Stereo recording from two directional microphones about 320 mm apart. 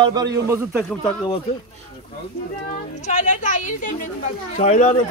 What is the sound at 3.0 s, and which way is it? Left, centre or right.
Speech, left.